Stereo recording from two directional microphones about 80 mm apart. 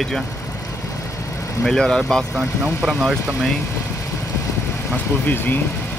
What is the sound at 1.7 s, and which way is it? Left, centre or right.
Speech, centre.